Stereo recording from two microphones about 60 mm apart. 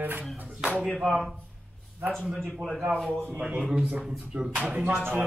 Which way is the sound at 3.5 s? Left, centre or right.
Centre.